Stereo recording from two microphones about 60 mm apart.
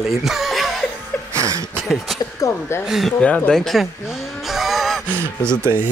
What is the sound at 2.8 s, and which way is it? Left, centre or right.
Speech, centre.